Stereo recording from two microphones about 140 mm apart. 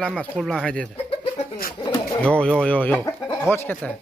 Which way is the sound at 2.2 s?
10° left (ahead or behind).